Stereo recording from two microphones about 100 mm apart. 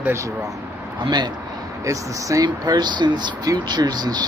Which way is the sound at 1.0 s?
45° right (ahead or behind).